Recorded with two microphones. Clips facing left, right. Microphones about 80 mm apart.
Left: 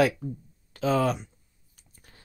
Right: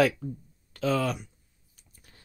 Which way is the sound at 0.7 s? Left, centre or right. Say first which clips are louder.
Left 3 dB; left.